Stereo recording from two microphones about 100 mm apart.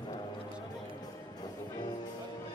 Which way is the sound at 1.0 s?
45° left (ahead or behind).